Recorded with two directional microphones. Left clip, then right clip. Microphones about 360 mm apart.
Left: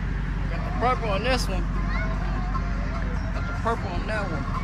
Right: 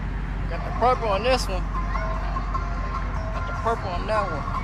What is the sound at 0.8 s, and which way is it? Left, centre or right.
Vehicle, centre.